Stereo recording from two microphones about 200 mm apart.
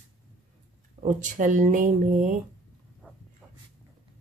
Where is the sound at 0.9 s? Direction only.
40° right (ahead or behind).